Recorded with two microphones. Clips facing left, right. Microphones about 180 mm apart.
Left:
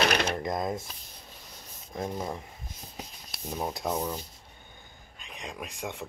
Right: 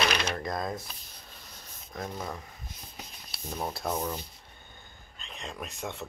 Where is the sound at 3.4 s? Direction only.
15° left (ahead or behind).